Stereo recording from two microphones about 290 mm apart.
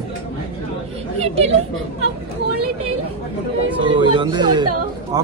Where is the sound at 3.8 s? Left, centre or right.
Centre.